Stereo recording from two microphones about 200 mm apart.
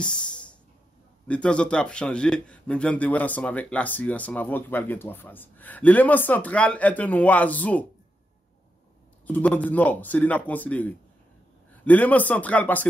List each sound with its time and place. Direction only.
0.0 s a sound: 5° left (ahead or behind)
1.2 s a man's voice: 5° left (ahead or behind)
9.3 s a man's voice: 5° left (ahead or behind)